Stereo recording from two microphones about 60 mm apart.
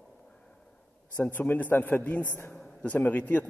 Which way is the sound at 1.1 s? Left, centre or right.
Left.